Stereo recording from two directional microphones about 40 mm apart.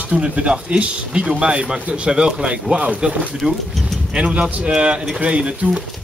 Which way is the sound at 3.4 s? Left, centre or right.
Centre.